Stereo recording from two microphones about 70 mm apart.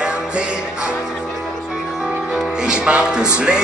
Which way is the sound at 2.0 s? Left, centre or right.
Centre.